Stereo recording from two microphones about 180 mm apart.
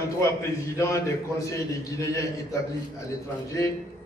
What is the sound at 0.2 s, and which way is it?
A man's voice, 15° left (ahead or behind).